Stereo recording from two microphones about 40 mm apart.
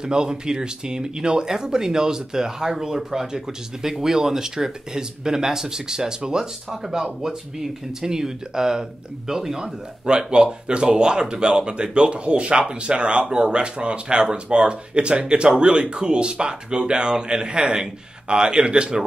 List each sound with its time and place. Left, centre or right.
0.0 s speech: centre
10.0 s speech: right